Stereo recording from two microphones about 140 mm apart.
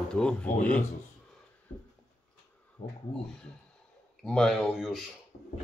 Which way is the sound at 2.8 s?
40° left (ahead or behind).